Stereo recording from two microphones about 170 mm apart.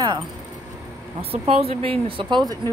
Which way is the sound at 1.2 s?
35° right (ahead or behind).